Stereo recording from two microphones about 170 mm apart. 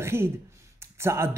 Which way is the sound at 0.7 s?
15° right (ahead or behind).